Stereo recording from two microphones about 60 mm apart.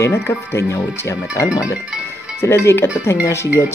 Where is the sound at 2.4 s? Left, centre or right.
Left.